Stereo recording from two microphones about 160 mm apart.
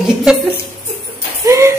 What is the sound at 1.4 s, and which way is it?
Music, 20° right (ahead or behind).